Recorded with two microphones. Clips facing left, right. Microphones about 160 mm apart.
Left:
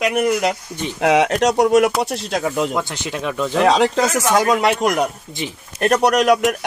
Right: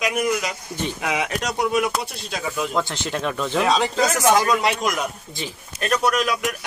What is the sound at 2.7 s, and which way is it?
Speech, 15° left (ahead or behind).